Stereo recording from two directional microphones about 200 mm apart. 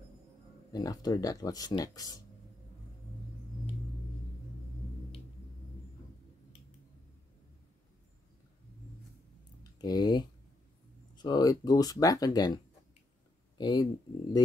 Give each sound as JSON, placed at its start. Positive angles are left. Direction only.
{"t": 0.7, "sound": "speech", "side_deg": 20}
{"t": 9.6, "sound": "a sound", "side_deg": 20}
{"t": 11.2, "sound": "speech", "side_deg": 20}
{"t": 13.6, "sound": "speech", "side_deg": 20}